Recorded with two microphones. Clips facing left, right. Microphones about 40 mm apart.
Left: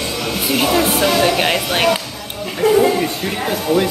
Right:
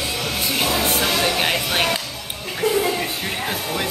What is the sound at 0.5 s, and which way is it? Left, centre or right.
Speech, centre.